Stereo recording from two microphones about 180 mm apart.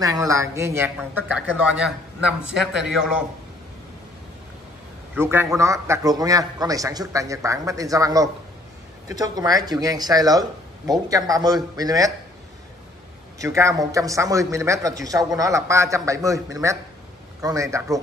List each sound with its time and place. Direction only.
0.0 s a man's voice: 20° right (ahead or behind); by 3.3 s 5° right (ahead or behind)
5.1 s a man's voice: 10° right (ahead or behind)
13.4 s a man's voice: 15° right (ahead or behind)